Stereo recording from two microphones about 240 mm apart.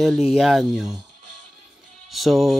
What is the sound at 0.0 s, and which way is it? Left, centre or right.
Speech, centre.